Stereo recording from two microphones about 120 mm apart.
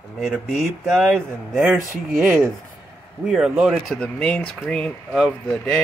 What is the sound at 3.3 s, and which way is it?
Speech, 5° right (ahead or behind).